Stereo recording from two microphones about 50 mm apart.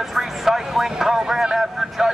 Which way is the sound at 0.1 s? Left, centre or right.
Centre.